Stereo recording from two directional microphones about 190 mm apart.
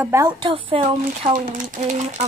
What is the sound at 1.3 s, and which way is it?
Speech, 40° right (ahead or behind).